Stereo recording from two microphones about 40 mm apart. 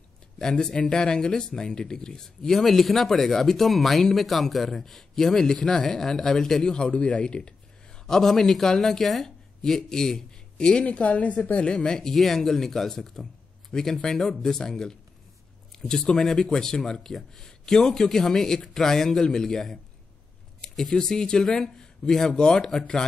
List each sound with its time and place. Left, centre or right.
0.4 s speech: centre
2.2 s speech: centre
6.9 s speech: left
8.1 s speech: centre
10.6 s a woman's voice: left
11.7 s speech: centre